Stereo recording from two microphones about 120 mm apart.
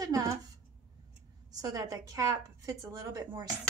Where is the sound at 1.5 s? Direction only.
30° right (ahead or behind).